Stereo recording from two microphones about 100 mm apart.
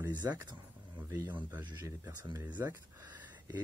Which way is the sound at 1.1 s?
25° right (ahead or behind).